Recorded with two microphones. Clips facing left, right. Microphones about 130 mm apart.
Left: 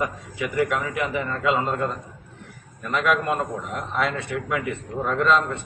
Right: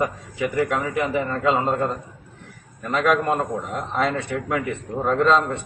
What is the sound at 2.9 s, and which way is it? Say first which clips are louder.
A man's voice: right 2 dB; 35° right (ahead or behind).